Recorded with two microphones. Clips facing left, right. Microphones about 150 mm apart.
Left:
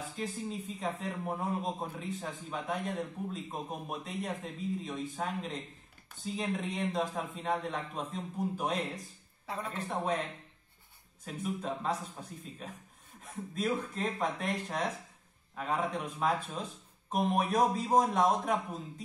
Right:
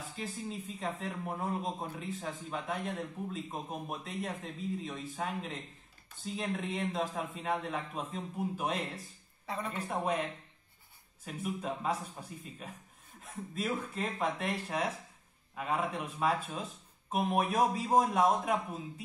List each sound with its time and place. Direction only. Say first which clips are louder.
0.1 s a man's voice: left 1 dB; centre (ahead or behind)
11.2 s a man's voice: left 1 dB; 10° right (ahead or behind)